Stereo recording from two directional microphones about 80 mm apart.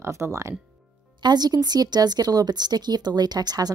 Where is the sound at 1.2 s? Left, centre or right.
Right.